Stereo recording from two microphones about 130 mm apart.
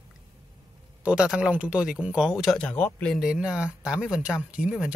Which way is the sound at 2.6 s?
10° left (ahead or behind).